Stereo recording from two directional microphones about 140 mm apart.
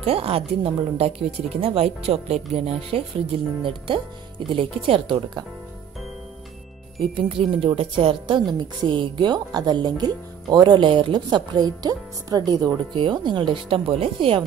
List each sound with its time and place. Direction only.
0.0 s speech: 45° right (ahead or behind)
7.0 s speech: 40° right (ahead or behind)